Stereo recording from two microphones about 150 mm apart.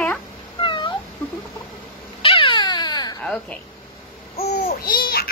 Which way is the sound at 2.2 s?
35° left (ahead or behind).